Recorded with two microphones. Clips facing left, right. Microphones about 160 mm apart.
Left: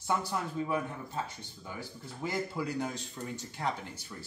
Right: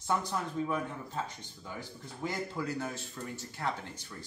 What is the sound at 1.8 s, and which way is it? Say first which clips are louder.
Speech: even; 10° left (ahead or behind).